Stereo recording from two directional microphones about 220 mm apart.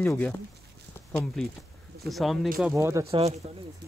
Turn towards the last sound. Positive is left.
turn(degrees=-30)  # may be behind; listen again after turning